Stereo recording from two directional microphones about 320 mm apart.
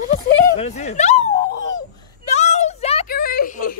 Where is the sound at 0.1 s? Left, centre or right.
Centre.